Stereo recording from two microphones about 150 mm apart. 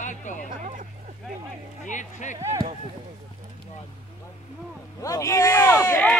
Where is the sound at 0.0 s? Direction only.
55° left (ahead or behind).